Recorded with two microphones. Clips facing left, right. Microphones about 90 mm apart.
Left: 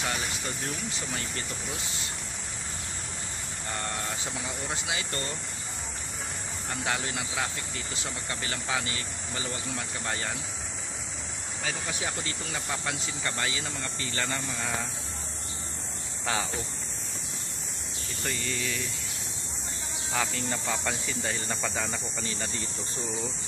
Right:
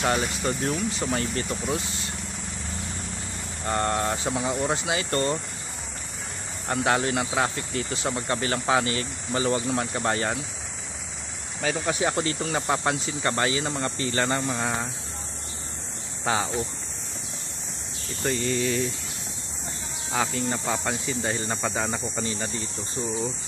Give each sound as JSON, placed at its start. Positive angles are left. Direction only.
{"t": 0.0, "sound": "speech", "side_deg": -60}
{"t": 3.6, "sound": "speech", "side_deg": -65}
{"t": 4.8, "sound": "speech", "side_deg": -55}
{"t": 6.7, "sound": "speech", "side_deg": -55}
{"t": 11.6, "sound": "speech", "side_deg": -60}
{"t": 18.2, "sound": "speech", "side_deg": -35}
{"t": 20.1, "sound": "speech", "side_deg": -20}